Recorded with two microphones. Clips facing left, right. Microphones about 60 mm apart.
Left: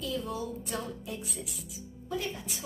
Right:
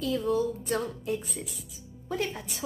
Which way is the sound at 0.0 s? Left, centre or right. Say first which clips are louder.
Right 8 dB; right.